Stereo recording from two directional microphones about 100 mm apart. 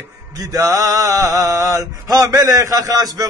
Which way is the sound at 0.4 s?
35° right (ahead or behind).